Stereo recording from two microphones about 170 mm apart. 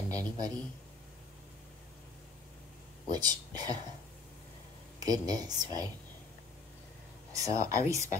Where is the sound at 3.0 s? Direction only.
25° right (ahead or behind).